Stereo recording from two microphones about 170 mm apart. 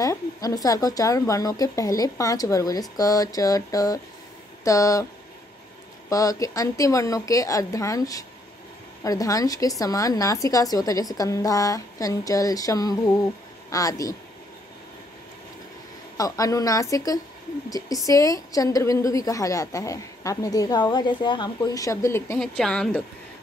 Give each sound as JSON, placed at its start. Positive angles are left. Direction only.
{"t": 0.0, "sound": "a woman's voice", "side_deg": 20}
{"t": 6.0, "sound": "a woman's voice", "side_deg": 20}
{"t": 16.2, "sound": "a woman's voice", "side_deg": 20}
{"t": 22.6, "sound": "a woman's voice", "side_deg": 5}